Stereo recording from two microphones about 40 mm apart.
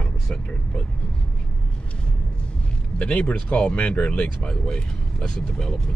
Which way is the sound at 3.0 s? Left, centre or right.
Left.